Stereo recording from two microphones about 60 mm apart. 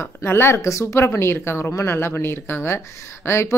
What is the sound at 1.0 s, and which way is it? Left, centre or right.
A woman's voice, left.